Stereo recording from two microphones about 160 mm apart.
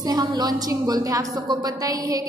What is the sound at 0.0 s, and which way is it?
A woman's voice, 25° right (ahead or behind).